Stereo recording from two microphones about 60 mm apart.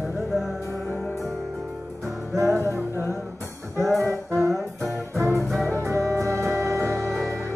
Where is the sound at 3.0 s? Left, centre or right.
Left.